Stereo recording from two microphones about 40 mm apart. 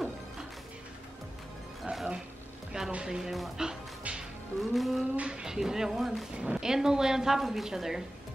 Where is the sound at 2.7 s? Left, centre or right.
Centre.